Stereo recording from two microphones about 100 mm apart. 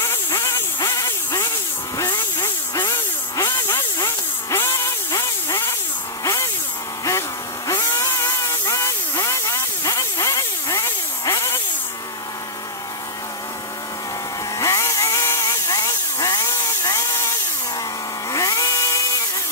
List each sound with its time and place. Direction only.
0.0 s a sound: 30° left (ahead or behind)
0.8 s vehicle: 30° left (ahead or behind)
2.8 s a sound: 30° left (ahead or behind)
7.1 s vehicle: 35° left (ahead or behind)
14.6 s chainsaw: 30° left (ahead or behind)
18.3 s chainsaw: 35° left (ahead or behind)